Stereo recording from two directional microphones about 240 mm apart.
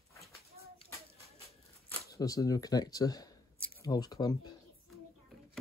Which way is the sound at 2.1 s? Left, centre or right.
Centre.